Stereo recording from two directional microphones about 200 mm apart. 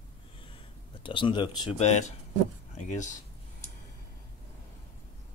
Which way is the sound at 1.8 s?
35° left (ahead or behind).